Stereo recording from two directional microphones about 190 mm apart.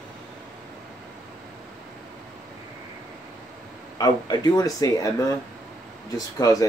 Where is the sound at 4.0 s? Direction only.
20° left (ahead or behind).